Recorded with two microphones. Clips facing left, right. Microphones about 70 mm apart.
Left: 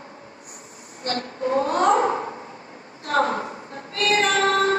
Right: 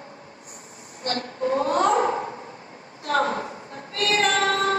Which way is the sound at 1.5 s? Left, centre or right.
Left.